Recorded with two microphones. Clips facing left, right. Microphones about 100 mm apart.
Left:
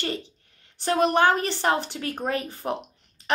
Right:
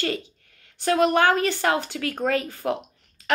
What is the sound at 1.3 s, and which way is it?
A woman's voice, 25° left (ahead or behind).